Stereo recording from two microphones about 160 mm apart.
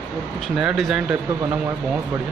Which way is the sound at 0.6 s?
5° right (ahead or behind).